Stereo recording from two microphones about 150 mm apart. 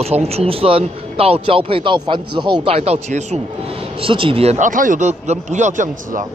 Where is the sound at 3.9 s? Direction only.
35° right (ahead or behind); by 6.3 s 60° right (ahead or behind).